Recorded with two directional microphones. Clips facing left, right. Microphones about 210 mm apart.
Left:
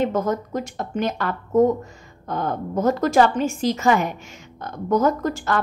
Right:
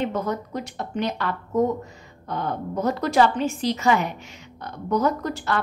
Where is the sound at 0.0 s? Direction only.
45° left (ahead or behind).